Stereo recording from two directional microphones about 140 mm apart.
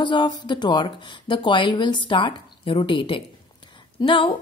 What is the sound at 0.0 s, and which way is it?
A woman's voice, 35° left (ahead or behind).